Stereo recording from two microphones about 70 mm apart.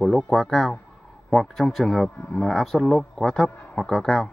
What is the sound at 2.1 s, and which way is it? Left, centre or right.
Speech, centre.